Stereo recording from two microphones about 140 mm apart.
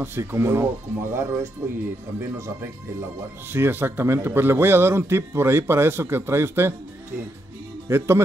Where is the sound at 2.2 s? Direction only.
20° right (ahead or behind).